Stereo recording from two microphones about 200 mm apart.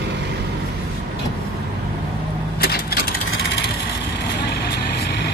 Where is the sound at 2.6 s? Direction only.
50° left (ahead or behind).